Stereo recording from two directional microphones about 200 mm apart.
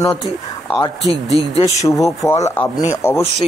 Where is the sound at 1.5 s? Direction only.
30° left (ahead or behind).